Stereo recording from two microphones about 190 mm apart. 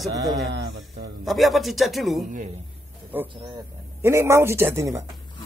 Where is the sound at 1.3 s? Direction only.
Centre (ahead or behind).